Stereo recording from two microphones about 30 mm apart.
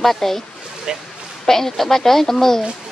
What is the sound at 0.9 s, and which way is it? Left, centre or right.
Speech, right.